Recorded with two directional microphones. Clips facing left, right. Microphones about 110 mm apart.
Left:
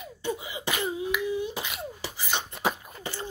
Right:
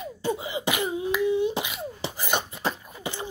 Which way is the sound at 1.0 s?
30° right (ahead or behind).